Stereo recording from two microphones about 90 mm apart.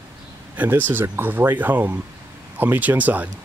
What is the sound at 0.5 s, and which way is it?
A man's voice, 15° right (ahead or behind).